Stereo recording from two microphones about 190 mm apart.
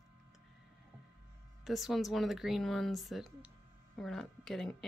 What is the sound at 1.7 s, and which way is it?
Speech, centre (ahead or behind).